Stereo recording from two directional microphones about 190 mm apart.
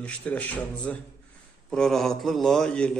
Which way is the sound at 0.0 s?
10° left (ahead or behind).